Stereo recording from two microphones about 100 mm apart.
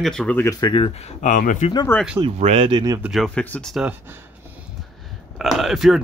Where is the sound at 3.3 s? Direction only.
15° left (ahead or behind).